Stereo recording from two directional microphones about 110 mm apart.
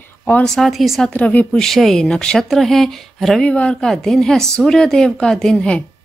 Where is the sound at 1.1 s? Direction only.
10° left (ahead or behind).